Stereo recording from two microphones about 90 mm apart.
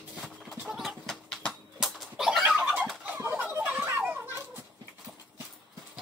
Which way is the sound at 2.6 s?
20° right (ahead or behind).